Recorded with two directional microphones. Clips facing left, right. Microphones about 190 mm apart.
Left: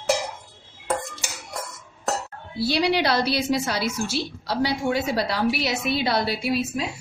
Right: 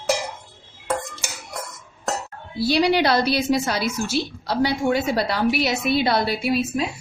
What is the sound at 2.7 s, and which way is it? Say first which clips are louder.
A woman's voice: right 3 dB; 50° right (ahead or behind).